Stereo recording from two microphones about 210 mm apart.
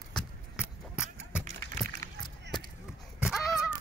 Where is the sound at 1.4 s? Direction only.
40° right (ahead or behind).